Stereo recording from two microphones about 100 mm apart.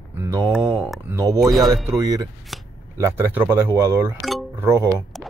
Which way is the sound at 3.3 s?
20° right (ahead or behind).